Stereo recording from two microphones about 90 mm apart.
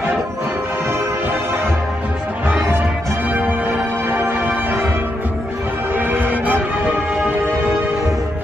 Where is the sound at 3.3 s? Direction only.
20° right (ahead or behind).